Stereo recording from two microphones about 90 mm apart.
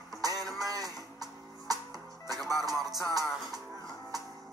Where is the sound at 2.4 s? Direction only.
45° right (ahead or behind).